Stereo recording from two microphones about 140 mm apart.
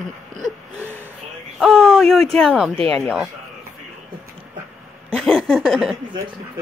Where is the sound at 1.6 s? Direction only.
5° left (ahead or behind).